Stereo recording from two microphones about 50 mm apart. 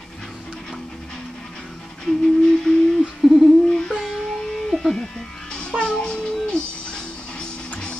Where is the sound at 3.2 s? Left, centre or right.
Centre.